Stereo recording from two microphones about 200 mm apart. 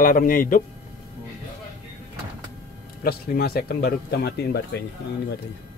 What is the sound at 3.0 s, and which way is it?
Speech, 50° left (ahead or behind).